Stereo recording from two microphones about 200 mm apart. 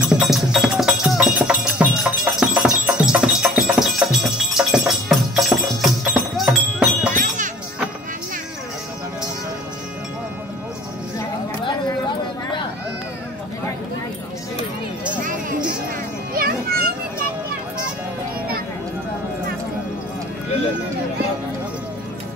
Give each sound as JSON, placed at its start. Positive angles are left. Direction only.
{"t": 0.0, "sound": "music", "side_deg": -5}
{"t": 7.2, "sound": "music", "side_deg": -40}
{"t": 16.3, "sound": "children playing", "side_deg": -50}